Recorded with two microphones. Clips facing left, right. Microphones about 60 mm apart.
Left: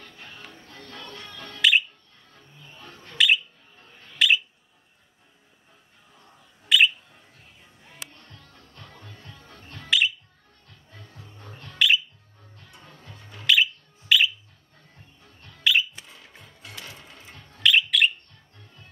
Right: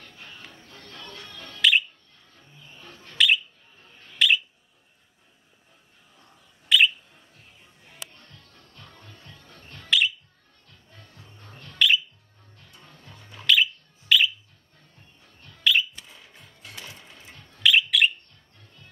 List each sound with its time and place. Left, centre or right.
1.6 s bird: centre
3.2 s bird: centre
6.7 s bird: centre
9.8 s music: centre
11.5 s bird: centre
13.3 s a sound: centre
15.7 s a sound: centre
16.8 s sewing machine: centre
17.6 s bird: centre